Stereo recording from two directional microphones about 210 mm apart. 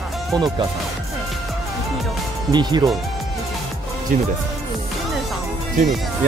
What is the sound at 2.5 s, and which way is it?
Speech, 20° right (ahead or behind).